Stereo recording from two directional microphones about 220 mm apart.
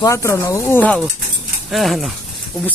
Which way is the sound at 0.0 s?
15° left (ahead or behind).